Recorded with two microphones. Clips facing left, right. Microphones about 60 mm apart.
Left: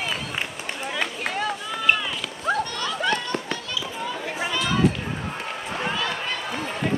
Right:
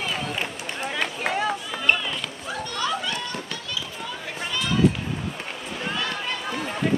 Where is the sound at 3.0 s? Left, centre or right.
Left.